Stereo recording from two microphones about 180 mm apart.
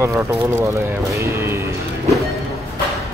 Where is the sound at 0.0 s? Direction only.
15° right (ahead or behind).